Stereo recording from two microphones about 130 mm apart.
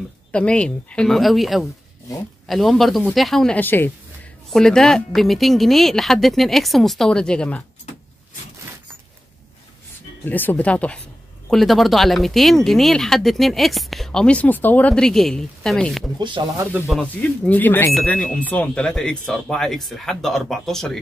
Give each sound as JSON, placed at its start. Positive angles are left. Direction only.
{"t": 0.3, "sound": "speech", "side_deg": 10}
{"t": 4.5, "sound": "speech", "side_deg": 5}
{"t": 10.2, "sound": "speech", "side_deg": 15}
{"t": 16.2, "sound": "speech", "side_deg": -35}
{"t": 16.8, "sound": "speech", "side_deg": 0}
{"t": 17.1, "sound": "speech", "side_deg": 15}